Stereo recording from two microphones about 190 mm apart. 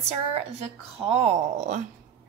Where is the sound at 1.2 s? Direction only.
40° right (ahead or behind).